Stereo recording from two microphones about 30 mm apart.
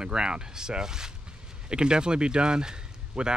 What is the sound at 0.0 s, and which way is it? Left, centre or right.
Speech, right.